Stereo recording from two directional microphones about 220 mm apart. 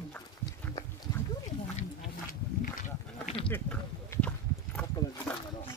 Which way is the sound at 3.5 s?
5° left (ahead or behind).